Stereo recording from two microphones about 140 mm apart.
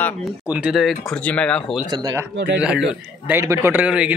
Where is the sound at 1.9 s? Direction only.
25° right (ahead or behind).